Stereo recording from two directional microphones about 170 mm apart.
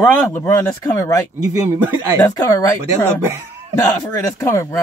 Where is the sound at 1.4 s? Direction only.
20° right (ahead or behind).